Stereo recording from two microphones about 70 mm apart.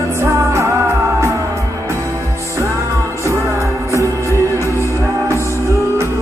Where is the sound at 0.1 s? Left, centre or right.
Right.